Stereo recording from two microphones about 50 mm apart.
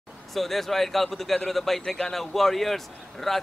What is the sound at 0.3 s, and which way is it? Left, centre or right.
A man's voice, centre.